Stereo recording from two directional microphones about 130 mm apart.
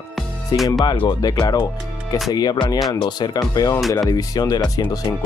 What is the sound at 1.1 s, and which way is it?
Speech, 30° left (ahead or behind).